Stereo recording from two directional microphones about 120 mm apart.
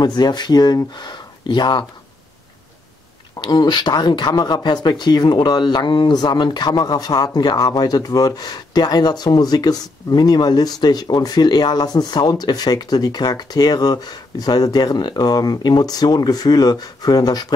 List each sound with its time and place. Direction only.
0.0 s speech: 35° left (ahead or behind)
3.3 s speech: 35° left (ahead or behind)